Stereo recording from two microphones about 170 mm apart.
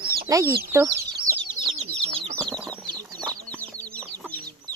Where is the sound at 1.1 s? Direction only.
30° right (ahead or behind).